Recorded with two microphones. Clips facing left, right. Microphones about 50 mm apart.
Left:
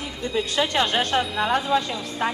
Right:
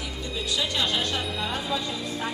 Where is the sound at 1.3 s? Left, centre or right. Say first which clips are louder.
Left 8 dB; left.